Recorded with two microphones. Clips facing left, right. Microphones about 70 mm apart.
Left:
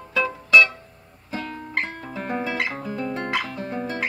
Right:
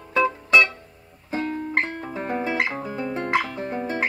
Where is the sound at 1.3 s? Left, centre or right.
Right.